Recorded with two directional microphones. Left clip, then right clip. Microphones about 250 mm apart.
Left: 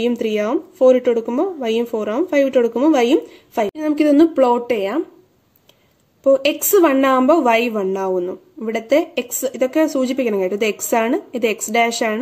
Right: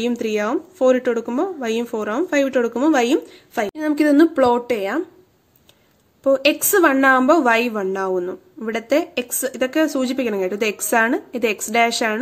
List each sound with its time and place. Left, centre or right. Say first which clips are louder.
0.0 s a woman's voice: left 2 dB; centre
6.2 s a woman's voice: left 2 dB; centre